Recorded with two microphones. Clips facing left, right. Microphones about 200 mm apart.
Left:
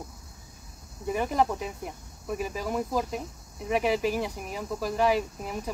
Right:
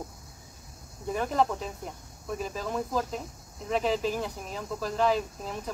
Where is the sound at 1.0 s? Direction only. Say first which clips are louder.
Left 1 dB; 10° left (ahead or behind).